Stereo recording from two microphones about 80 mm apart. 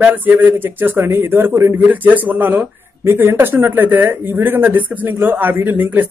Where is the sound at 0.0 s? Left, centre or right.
Right.